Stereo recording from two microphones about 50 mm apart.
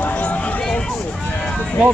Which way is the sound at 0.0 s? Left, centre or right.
Left.